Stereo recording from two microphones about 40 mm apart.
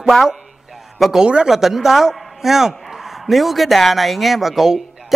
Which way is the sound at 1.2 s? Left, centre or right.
Right.